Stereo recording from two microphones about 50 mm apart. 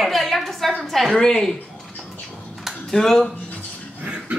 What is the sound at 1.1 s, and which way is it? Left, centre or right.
Speech, centre.